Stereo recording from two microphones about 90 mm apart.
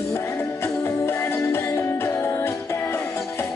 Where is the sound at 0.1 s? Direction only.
30° left (ahead or behind).